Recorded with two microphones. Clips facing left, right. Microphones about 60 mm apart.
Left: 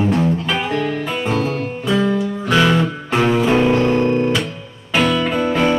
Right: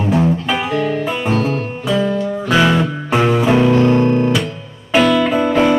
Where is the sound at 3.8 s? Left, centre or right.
Right.